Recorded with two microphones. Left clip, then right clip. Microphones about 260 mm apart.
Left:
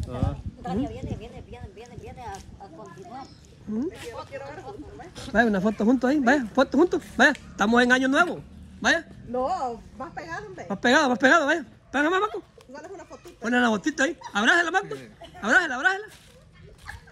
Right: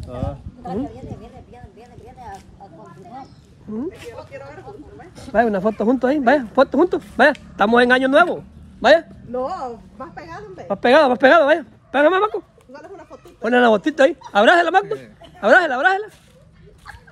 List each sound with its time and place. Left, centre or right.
0.0 s speech: centre
0.7 s a sound: left
3.9 s a woman's voice: left
5.1 s speech: centre
9.3 s a woman's voice: left
10.7 s speech: centre
12.7 s a sound: left
13.1 s speech: centre